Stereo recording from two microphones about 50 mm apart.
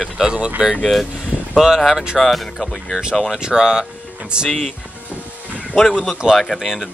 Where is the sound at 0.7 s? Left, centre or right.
Centre.